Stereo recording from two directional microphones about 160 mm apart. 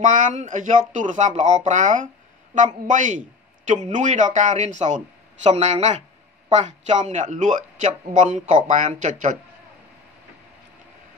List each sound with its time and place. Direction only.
0.0 s a man's voice: 50° right (ahead or behind)